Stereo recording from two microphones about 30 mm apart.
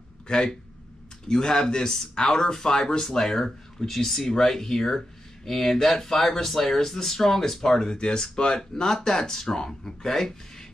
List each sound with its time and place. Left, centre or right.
0.3 s speech: left
2.5 s speech: centre
8.0 s speech: left
10.0 s speech: centre